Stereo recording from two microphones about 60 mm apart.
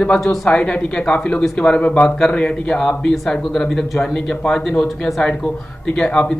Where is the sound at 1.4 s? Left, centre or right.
Centre.